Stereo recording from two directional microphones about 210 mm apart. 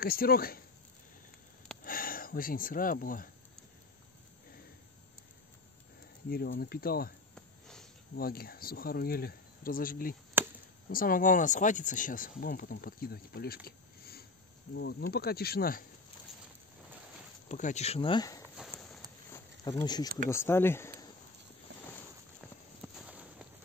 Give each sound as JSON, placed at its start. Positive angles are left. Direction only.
{"t": 0.0, "sound": "speech", "side_deg": 45}
{"t": 1.9, "sound": "speech", "side_deg": 40}
{"t": 6.3, "sound": "speech", "side_deg": 45}
{"t": 7.3, "sound": "a sound", "side_deg": 0}
{"t": 8.2, "sound": "speech", "side_deg": 45}
{"t": 10.4, "sound": "chop", "side_deg": -10}
{"t": 10.9, "sound": "speech", "side_deg": 40}
{"t": 17.5, "sound": "speech", "side_deg": 35}
{"t": 18.4, "sound": "walk", "side_deg": -10}
{"t": 19.3, "sound": "a sound", "side_deg": 15}
{"t": 20.2, "sound": "speech", "side_deg": 10}
{"t": 22.8, "sound": "a sound", "side_deg": -5}